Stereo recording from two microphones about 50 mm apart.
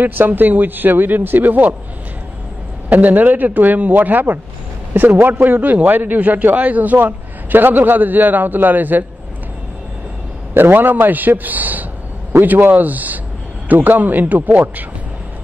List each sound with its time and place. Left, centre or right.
0.0 s a man's voice: right
2.9 s a man's voice: right
7.0 s a man's voice: right
10.5 s a man's voice: right